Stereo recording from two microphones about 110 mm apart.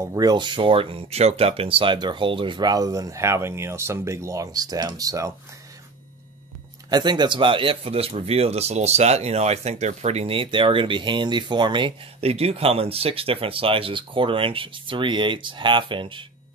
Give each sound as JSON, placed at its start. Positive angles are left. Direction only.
{"t": 0.0, "sound": "speech", "side_deg": -35}
{"t": 6.9, "sound": "a man's voice", "side_deg": -40}
{"t": 12.2, "sound": "speech", "side_deg": -65}